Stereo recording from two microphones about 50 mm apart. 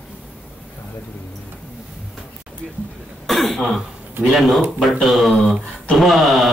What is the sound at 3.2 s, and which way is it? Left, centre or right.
Throat clearing, centre.